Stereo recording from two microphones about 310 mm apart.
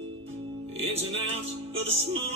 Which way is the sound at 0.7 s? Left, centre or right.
Centre.